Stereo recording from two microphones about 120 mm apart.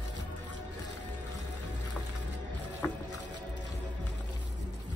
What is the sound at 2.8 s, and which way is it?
Boat, 25° left (ahead or behind).